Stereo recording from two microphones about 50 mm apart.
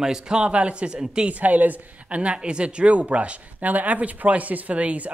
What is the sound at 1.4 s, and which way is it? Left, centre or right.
A woman's voice, right.